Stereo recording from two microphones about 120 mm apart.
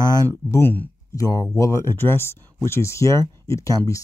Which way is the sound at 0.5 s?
15° left (ahead or behind).